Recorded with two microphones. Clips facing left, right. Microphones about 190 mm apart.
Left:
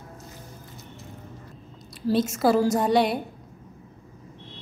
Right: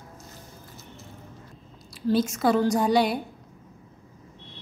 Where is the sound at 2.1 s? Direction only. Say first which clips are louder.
Left 1 dB; centre (ahead or behind).